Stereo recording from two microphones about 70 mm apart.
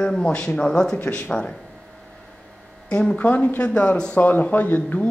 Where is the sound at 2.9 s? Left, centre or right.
Centre.